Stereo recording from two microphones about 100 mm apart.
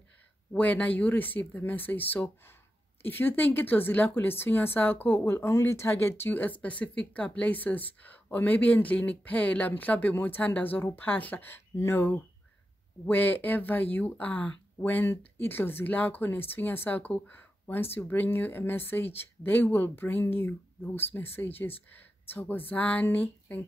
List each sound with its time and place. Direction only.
0.5 s a woman's voice: 15° left (ahead or behind)